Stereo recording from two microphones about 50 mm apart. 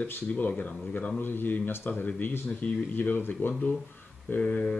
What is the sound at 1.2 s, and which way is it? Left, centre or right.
Speech, left.